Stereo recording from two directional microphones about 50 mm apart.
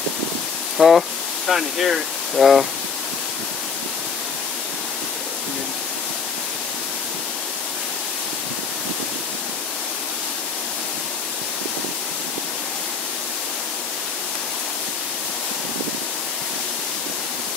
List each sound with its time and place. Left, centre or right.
0.7 s speech: centre